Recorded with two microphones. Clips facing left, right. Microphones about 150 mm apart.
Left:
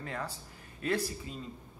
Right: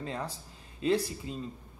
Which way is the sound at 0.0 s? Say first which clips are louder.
Right 2 dB; 25° right (ahead or behind).